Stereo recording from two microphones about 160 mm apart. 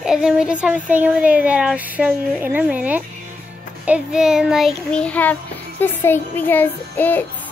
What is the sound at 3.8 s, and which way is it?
Child singing, 5° right (ahead or behind).